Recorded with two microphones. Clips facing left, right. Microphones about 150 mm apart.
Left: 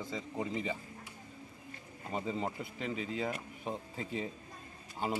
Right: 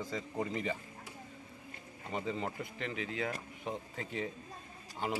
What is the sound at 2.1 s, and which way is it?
A man's voice, 5° left (ahead or behind).